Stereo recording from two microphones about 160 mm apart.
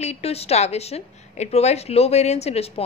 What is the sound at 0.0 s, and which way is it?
A woman's voice, 40° left (ahead or behind).